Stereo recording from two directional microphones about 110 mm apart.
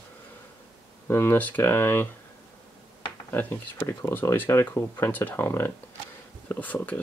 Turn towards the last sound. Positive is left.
turn(degrees=15)  # may be behind; listen again after turning